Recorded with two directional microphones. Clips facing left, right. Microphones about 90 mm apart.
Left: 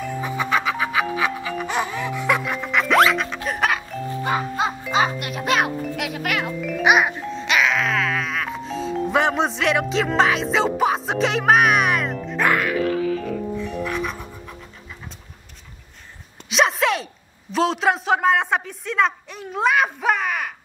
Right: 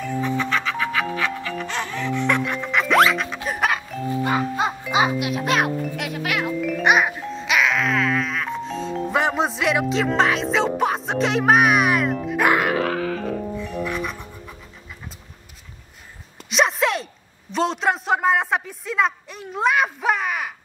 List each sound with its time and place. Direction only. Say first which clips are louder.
0.0 s music: right 2 dB; 10° left (ahead or behind)
4.2 s music: right 1 dB; 15° left (ahead or behind)
4.8 s speech: right 3 dB; 5° right (ahead or behind)
12.4 s music: right 1 dB; 25° right (ahead or behind)
12.7 s music: left 1 dB; 65° right (ahead or behind)
13.6 s music: left 1 dB; centre (ahead or behind)
16.4 s a man's voice: left 1 dB; centre (ahead or behind)